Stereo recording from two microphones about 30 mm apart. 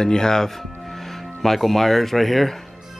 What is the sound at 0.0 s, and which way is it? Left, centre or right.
Speech, left.